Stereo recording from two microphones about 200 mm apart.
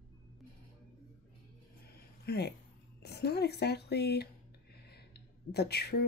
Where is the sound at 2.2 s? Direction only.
55° left (ahead or behind).